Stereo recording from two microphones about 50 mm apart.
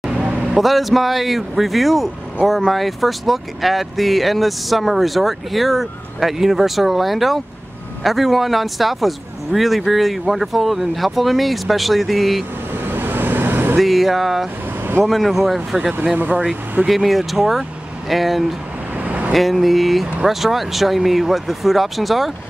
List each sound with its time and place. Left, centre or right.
0.0 s vehicle: centre
0.4 s speech: centre
12.7 s vehicle: right
13.7 s speech: centre
15.9 s speech: right
16.8 s speech: centre
18.9 s vehicle: right
19.3 s speech: centre